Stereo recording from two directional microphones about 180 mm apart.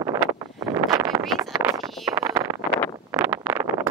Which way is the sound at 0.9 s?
20° right (ahead or behind).